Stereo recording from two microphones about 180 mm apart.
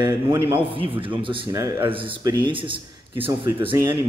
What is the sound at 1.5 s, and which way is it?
Mantra, 20° right (ahead or behind).